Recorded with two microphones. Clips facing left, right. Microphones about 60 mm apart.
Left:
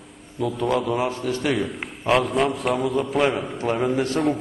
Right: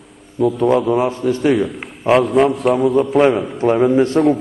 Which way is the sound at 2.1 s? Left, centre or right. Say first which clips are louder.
Right 7 dB; centre.